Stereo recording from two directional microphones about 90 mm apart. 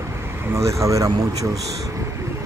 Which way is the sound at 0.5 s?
35° right (ahead or behind).